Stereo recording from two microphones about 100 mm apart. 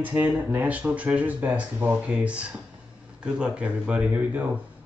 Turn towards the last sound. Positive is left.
turn(degrees=-15)  # may be behind; listen again after turning